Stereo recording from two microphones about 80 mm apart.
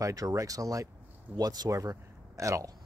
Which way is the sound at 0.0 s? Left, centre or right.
Right.